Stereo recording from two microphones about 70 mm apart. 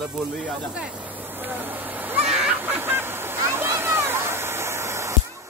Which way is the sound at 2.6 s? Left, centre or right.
Right.